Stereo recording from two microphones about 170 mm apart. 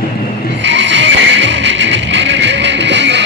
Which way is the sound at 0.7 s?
90° right.